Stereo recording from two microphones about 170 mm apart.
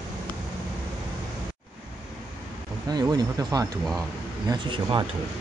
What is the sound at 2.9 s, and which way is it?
Speech, 25° right (ahead or behind).